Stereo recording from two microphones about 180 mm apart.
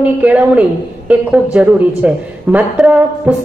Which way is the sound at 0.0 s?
10° right (ahead or behind).